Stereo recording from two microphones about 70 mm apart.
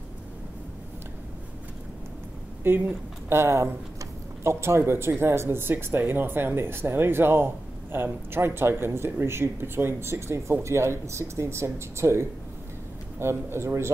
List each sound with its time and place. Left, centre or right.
2.6 s a woman's voice: right